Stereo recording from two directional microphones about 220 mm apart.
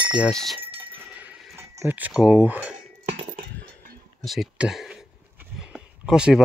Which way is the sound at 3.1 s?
35° right (ahead or behind).